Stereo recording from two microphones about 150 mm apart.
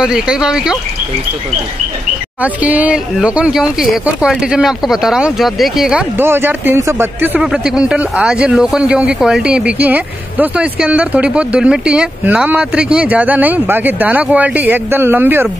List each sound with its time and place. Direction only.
0.0 s speech: 5° right (ahead or behind)
2.4 s speech: 10° right (ahead or behind)
6.1 s speech: 15° right (ahead or behind)
7.3 s speech: 5° right (ahead or behind)